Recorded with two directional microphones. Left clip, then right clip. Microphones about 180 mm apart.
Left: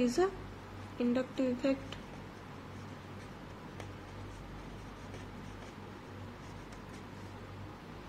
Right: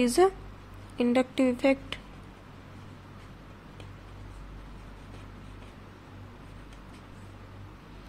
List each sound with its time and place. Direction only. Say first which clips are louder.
0.0 s a woman's voice: right 8 dB; 55° right (ahead or behind)